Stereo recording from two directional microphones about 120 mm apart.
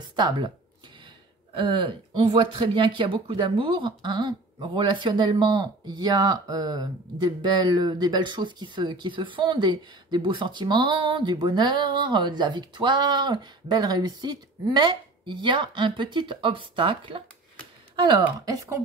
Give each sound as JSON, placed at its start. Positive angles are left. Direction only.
{"t": 0.1, "sound": "speech", "side_deg": -40}
{"t": 1.5, "sound": "speech", "side_deg": -45}